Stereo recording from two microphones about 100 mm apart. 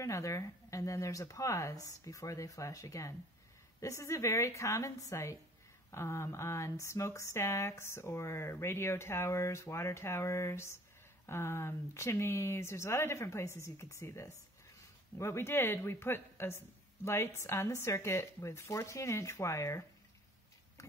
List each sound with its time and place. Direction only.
0.0 s speech: 30° left (ahead or behind)